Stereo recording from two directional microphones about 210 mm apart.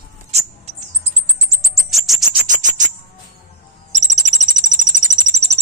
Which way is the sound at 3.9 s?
35° right (ahead or behind).